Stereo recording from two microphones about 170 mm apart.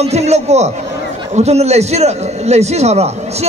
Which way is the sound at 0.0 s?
40° right (ahead or behind).